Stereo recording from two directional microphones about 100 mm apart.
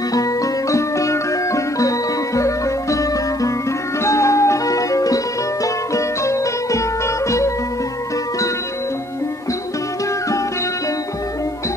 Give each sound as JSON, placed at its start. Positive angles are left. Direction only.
{"t": 0.1, "sound": "music", "side_deg": 35}